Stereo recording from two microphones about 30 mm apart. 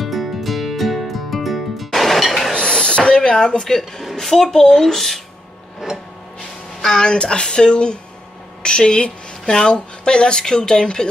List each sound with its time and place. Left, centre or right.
0.0 s music: centre
2.5 s a sound: left
4.2 s speech: centre
7.0 s speech: left